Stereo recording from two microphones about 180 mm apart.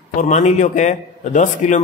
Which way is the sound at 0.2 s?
40° left (ahead or behind).